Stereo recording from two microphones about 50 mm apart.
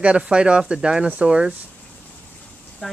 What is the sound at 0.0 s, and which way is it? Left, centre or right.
Speech, centre.